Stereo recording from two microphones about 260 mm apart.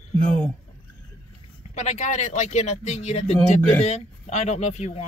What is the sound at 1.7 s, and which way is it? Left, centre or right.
Speech, left.